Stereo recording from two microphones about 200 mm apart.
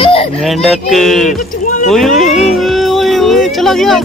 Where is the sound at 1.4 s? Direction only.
45° left (ahead or behind).